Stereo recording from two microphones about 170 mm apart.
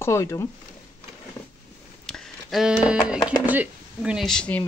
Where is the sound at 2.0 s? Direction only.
Centre (ahead or behind).